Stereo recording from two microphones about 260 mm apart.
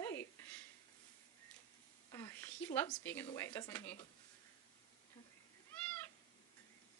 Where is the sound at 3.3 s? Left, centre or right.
Centre.